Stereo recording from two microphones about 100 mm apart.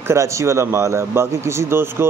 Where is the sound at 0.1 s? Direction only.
30° right (ahead or behind).